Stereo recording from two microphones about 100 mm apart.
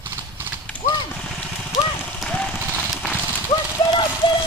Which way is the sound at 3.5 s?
45° left (ahead or behind).